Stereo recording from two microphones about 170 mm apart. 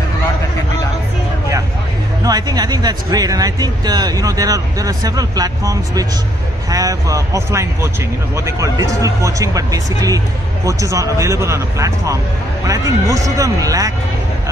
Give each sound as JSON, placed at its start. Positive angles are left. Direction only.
{"t": 2.2, "sound": "speech", "side_deg": -20}